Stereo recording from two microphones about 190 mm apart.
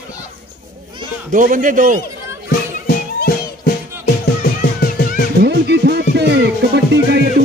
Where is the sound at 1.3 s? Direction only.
45° right (ahead or behind).